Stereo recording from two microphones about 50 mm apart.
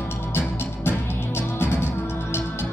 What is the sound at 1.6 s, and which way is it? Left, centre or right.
Music, left.